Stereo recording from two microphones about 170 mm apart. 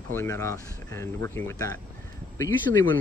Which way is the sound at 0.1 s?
15° left (ahead or behind).